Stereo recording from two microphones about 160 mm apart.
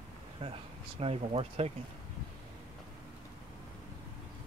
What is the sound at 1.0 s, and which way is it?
Speech, 40° right (ahead or behind).